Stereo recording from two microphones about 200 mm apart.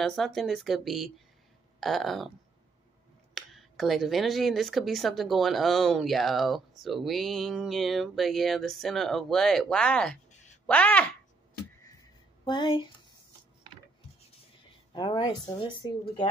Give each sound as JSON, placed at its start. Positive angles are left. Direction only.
{"t": 0.0, "sound": "speech", "side_deg": 0}
{"t": 3.3, "sound": "speech", "side_deg": 0}
{"t": 10.3, "sound": "a sound", "side_deg": 35}
{"t": 10.7, "sound": "a woman's voice", "side_deg": 5}
{"t": 12.4, "sound": "speech", "side_deg": 25}
{"t": 15.0, "sound": "speech", "side_deg": 20}